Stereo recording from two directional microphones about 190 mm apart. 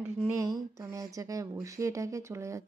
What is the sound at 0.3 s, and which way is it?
Speech, 15° right (ahead or behind).